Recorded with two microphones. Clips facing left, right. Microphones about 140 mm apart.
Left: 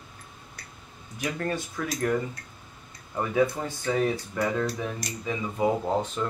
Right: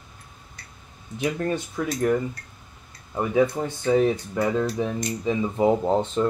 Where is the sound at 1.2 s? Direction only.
20° right (ahead or behind).